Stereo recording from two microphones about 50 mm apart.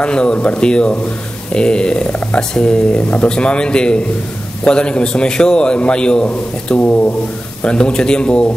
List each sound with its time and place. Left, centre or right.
0.0 s speech: centre
7.6 s speech: centre